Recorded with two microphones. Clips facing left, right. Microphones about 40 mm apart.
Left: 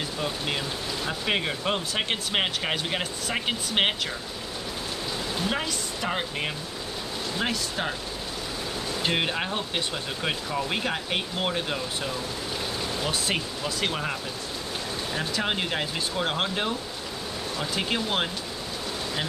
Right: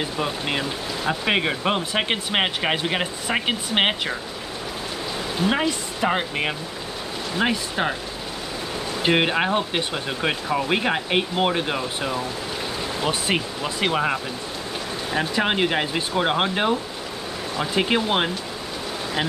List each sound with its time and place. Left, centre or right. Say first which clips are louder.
0.0 s speech: right 4 dB; right
5.4 s speech: right 9 dB; right
9.0 s speech: right 8 dB; right